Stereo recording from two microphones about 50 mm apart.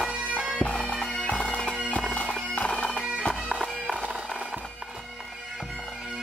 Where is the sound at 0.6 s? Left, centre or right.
Left.